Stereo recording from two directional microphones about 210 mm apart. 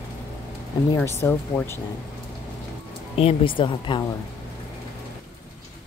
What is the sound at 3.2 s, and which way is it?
Speech, 25° left (ahead or behind).